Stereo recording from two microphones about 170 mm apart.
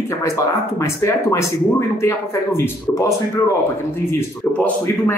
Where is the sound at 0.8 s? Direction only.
15° left (ahead or behind).